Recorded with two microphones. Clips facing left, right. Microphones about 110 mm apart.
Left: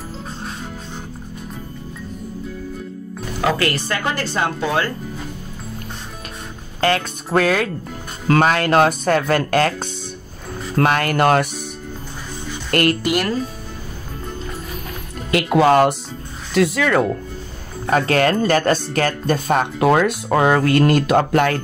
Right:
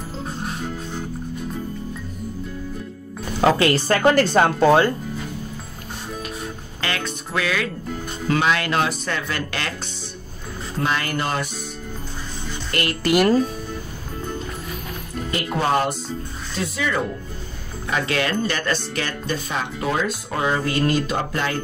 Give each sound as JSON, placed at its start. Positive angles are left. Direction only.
{"t": 3.3, "sound": "speech", "side_deg": -25}
{"t": 4.0, "sound": "speech", "side_deg": -50}
{"t": 6.8, "sound": "speech", "side_deg": 40}
{"t": 10.8, "sound": "speech", "side_deg": 60}
{"t": 12.7, "sound": "speech", "side_deg": 50}
{"t": 15.3, "sound": "speech", "side_deg": 90}
{"t": 17.8, "sound": "speech", "side_deg": 45}